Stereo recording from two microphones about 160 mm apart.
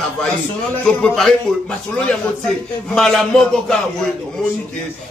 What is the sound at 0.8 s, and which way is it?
Speech, 5° left (ahead or behind).